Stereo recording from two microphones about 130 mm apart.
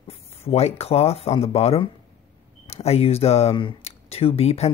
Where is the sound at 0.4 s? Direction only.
50° left (ahead or behind).